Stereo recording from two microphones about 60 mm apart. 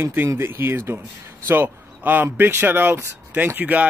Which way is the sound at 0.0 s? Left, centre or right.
Right.